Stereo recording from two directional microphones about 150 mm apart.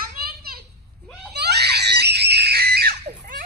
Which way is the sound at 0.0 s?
85° right.